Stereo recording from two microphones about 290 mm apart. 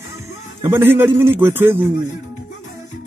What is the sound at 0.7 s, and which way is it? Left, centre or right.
A man's voice, centre.